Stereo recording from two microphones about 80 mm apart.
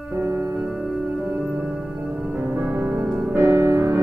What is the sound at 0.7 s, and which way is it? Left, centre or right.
Music, centre.